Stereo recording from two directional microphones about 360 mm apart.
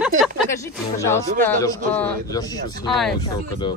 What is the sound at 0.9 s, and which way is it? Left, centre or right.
Speech, centre.